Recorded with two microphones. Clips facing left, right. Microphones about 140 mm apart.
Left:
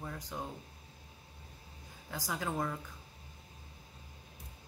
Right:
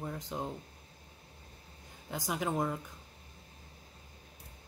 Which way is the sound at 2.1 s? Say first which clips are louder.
Right 3 dB; 20° right (ahead or behind).